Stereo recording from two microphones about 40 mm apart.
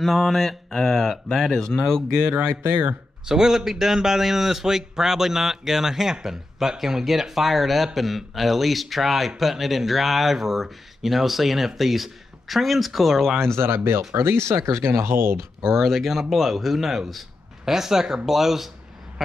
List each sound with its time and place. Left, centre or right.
0.0 s speech: centre
2.3 s speech: right
3.3 s a man's voice: centre
13.6 s speech: right
15.6 s a man's voice: centre